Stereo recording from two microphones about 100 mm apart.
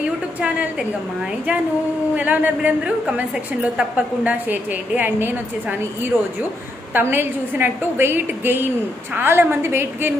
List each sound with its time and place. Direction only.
2.1 s a woman's voice: 15° right (ahead or behind)
6.9 s a woman's voice: 20° right (ahead or behind)